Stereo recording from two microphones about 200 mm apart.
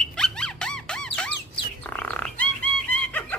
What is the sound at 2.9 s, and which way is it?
Chicken, 10° left (ahead or behind).